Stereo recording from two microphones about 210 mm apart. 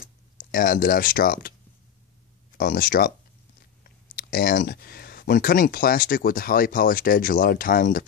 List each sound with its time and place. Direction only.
0.4 s speech: 40° left (ahead or behind)
2.5 s speech: 40° left (ahead or behind)